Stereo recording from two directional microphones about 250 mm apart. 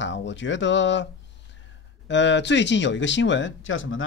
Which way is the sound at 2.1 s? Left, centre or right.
Left.